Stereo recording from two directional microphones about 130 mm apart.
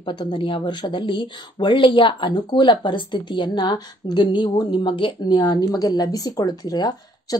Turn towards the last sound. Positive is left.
turn(degrees=30)  # may be behind; listen again after turning